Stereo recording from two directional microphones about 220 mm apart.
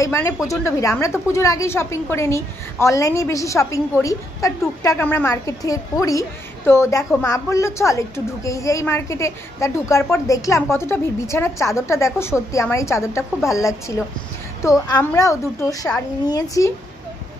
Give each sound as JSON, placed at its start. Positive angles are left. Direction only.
{"t": 0.0, "sound": "a woman's voice", "side_deg": 10}